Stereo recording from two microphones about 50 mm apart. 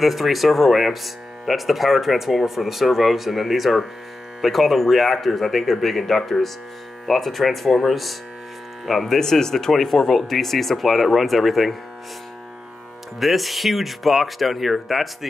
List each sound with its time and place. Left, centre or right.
0.0 s speech: centre
13.2 s speech: centre